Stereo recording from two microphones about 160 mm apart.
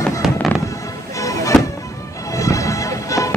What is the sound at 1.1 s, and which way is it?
Music, 20° left (ahead or behind).